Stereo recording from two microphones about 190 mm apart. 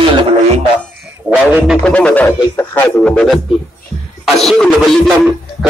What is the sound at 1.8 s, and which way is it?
Speech, 5° left (ahead or behind).